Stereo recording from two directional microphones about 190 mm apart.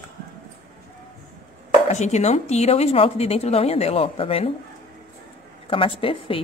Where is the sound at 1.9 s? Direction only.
35° left (ahead or behind).